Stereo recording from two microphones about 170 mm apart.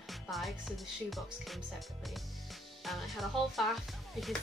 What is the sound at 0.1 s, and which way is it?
Speech, centre (ahead or behind).